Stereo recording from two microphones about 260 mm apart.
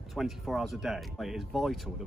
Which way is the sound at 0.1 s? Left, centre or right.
Centre.